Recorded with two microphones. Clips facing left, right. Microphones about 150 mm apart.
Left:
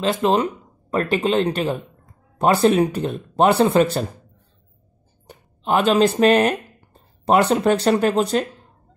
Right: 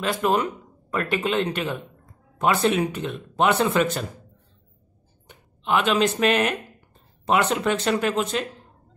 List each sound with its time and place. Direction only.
0.0 s speech: 25° left (ahead or behind)
5.2 s speech: 40° left (ahead or behind)